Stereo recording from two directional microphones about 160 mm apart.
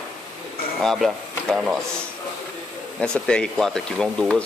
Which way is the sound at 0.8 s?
Centre (ahead or behind).